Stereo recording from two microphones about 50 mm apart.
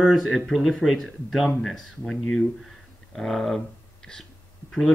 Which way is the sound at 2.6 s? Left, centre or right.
Centre.